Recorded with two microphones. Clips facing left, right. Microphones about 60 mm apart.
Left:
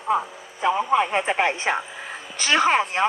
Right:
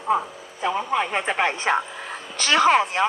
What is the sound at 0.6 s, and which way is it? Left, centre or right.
A woman's voice, centre.